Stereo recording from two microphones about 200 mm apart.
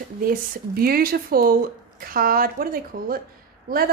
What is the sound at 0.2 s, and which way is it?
A woman's voice, 45° right (ahead or behind).